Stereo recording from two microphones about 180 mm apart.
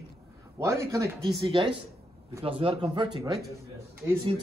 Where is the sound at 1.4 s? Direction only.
25° right (ahead or behind).